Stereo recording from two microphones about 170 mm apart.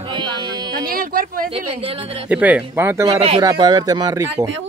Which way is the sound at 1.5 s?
35° right (ahead or behind).